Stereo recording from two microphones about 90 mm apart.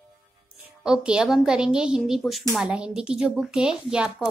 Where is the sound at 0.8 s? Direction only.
5° right (ahead or behind).